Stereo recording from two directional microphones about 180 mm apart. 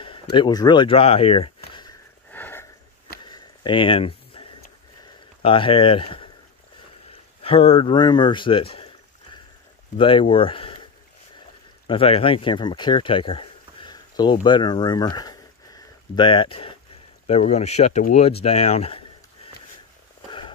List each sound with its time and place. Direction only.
0.0 s speech: 25° left (ahead or behind)
2.3 s sniff: 10° left (ahead or behind)
3.3 s a sound: 25° left (ahead or behind)
5.4 s speech: 30° left (ahead or behind)
7.4 s speech: 30° left (ahead or behind)
9.9 s speech: 30° left (ahead or behind)
11.9 s speech: 30° left (ahead or behind)
20.2 s a sound: 25° left (ahead or behind)